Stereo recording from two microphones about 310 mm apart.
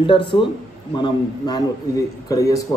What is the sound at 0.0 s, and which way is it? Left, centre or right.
A man's voice, centre.